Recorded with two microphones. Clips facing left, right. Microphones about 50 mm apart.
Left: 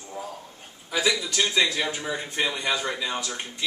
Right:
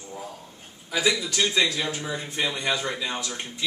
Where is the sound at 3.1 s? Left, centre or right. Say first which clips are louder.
Left 1 dB; centre.